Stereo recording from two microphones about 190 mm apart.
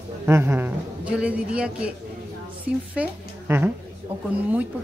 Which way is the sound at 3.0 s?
10° right (ahead or behind).